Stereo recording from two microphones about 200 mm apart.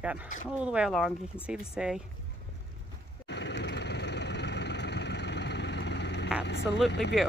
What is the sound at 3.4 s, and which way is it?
Vehicle, 60° left (ahead or behind).